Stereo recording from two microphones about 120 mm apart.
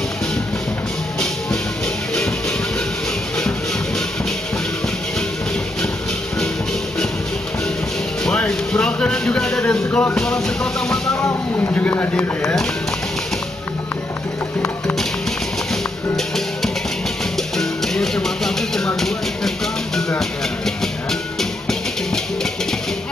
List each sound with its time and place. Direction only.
8.3 s speech: 5° left (ahead or behind)
11.1 s speech: 20° left (ahead or behind)
12.4 s speech: 5° left (ahead or behind)
17.6 s music: 5° left (ahead or behind)
18.9 s a sound: 5° left (ahead or behind)
20.2 s music: 5° left (ahead or behind)